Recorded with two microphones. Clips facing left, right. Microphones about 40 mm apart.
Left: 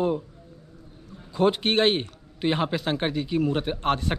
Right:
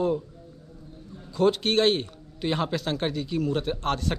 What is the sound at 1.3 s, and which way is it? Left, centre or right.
A man's voice, left.